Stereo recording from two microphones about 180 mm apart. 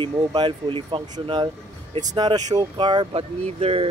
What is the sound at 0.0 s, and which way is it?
Speech, 25° right (ahead or behind).